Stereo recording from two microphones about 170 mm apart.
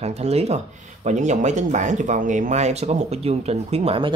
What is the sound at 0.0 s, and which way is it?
Speech, 40° right (ahead or behind).